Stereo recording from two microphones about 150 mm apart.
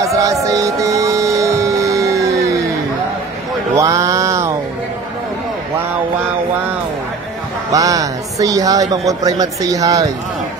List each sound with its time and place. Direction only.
0.0 s music: 20° right (ahead or behind)
3.7 s a sound: 20° right (ahead or behind)
7.7 s speech: 25° right (ahead or behind)